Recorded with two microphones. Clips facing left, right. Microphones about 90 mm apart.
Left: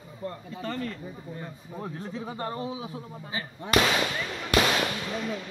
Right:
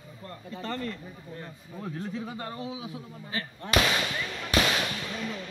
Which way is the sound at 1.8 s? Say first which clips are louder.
Right 1 dB; 30° left (ahead or behind).